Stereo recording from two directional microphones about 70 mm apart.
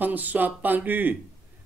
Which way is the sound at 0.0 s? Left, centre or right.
Right.